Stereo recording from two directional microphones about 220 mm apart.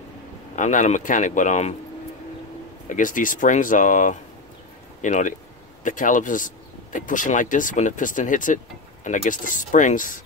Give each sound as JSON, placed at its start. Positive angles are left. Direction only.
{"t": 0.6, "sound": "speech", "side_deg": 35}
{"t": 2.9, "sound": "speech", "side_deg": 35}